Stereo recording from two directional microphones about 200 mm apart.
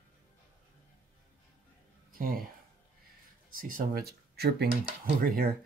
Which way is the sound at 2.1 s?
45° right (ahead or behind).